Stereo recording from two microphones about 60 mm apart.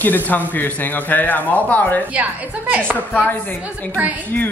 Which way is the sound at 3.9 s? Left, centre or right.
Right.